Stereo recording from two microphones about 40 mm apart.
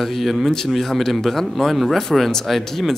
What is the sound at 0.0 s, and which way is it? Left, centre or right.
Speech, centre.